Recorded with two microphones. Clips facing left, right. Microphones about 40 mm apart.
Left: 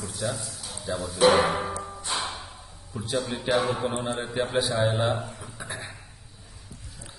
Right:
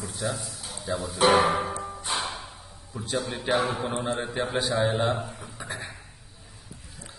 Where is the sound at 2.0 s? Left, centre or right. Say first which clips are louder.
Even; right.